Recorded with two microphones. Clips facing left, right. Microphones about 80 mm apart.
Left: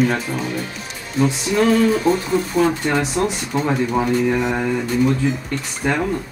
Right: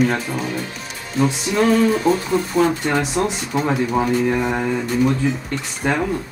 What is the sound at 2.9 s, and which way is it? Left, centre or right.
Speech, centre.